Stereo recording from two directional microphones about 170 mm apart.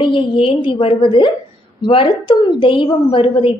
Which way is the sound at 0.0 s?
30° left (ahead or behind).